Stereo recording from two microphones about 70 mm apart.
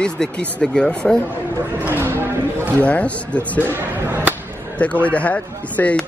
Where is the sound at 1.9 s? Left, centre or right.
Right.